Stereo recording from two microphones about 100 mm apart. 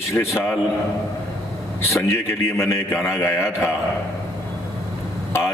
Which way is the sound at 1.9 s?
25° left (ahead or behind).